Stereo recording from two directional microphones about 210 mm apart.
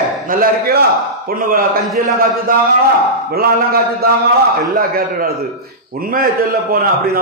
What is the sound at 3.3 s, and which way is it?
A man's voice, 45° right (ahead or behind).